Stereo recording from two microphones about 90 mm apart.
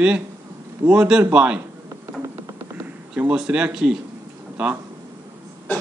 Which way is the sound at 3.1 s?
15° right (ahead or behind).